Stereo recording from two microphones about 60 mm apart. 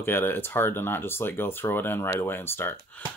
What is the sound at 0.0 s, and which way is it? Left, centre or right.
Speech, left.